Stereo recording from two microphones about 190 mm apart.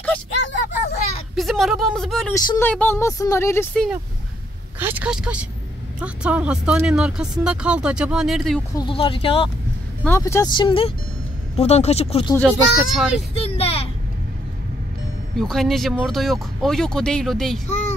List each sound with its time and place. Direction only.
1.3 s speech: centre (ahead or behind)
2.3 s speech: 15° left (ahead or behind)
4.7 s speech: 10° right (ahead or behind)
8.7 s speech: 25° left (ahead or behind)
10.0 s speech: 15° left (ahead or behind); by 12.4 s 30° left (ahead or behind)
12.4 s speech: centre (ahead or behind)
13.4 s a sound: 30° left (ahead or behind)
15.3 s speech: centre (ahead or behind)
17.6 s a sound: 35° left (ahead or behind)